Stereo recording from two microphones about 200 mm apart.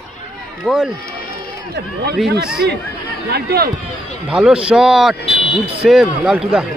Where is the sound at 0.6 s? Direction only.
5° right (ahead or behind).